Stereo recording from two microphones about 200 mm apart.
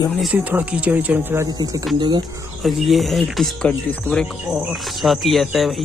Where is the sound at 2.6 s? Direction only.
Centre (ahead or behind).